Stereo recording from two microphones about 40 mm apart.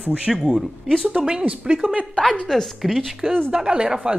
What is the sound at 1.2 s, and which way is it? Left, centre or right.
Speech, right.